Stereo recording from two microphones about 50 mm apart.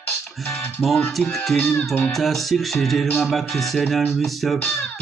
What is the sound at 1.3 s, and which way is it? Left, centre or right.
Speech, centre.